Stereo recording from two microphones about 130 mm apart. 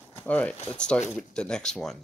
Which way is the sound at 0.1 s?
10° left (ahead or behind).